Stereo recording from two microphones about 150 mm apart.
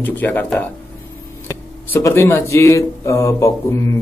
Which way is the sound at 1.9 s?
20° left (ahead or behind).